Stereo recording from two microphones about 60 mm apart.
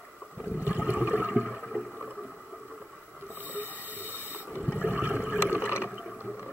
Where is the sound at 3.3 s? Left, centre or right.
Right.